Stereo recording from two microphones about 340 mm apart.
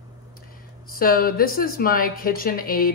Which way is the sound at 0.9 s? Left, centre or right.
Left.